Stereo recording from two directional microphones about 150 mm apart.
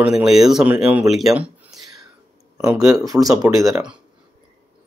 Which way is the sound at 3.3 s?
25° right (ahead or behind).